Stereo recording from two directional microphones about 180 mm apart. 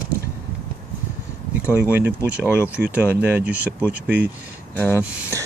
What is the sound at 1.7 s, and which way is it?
Speech, 10° right (ahead or behind).